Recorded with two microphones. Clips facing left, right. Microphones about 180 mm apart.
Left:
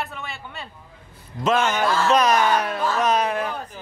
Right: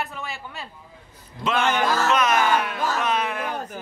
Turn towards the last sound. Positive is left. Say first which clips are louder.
# left 4 dB
turn(degrees=40)  # may be behind; listen again after turning